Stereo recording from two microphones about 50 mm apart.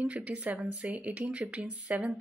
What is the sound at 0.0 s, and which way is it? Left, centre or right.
Speech, right.